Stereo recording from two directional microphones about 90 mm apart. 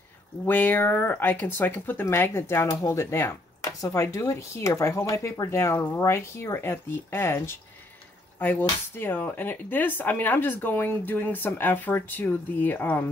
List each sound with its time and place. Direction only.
0.5 s speech: 20° left (ahead or behind)